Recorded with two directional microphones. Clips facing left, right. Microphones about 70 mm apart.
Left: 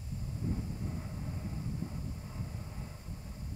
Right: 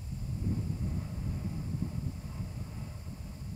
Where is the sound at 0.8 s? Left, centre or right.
Centre.